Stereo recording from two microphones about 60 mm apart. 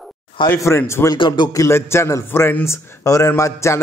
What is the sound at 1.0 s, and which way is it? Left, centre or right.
Speech, left.